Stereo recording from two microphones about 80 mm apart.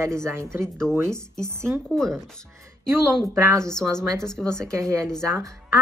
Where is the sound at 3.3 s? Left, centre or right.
Right.